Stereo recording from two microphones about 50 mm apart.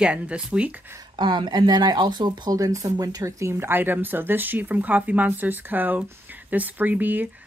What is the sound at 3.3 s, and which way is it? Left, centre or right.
Speech, right.